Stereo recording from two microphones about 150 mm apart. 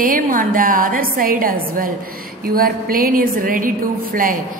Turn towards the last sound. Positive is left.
turn(degrees=-65)  # may be behind; listen again after turning